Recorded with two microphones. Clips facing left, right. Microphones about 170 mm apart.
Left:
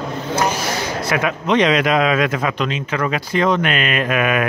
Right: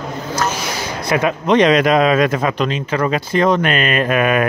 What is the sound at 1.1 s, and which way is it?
A man's voice, 35° right (ahead or behind).